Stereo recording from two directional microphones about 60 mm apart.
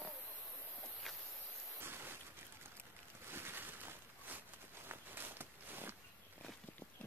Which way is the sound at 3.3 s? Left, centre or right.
Right.